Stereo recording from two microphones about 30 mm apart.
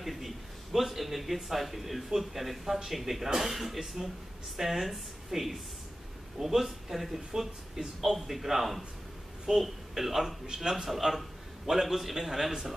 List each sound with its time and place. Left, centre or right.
0.0 s a man's voice: centre
10.4 s a man's voice: right
10.7 s a man's voice: centre